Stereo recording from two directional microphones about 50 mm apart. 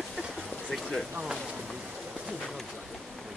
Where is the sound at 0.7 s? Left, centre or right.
Centre.